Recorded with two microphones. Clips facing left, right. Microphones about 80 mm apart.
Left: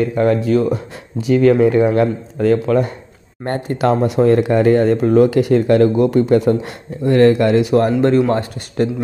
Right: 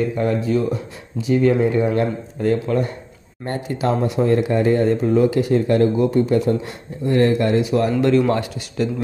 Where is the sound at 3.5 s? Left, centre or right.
Left.